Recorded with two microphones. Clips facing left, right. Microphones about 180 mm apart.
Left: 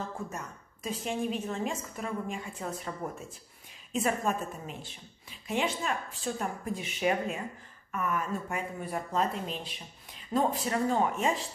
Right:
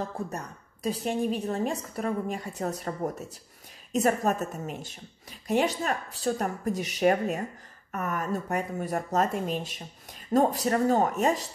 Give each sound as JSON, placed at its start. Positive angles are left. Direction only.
{"t": 0.3, "sound": "speech", "side_deg": -35}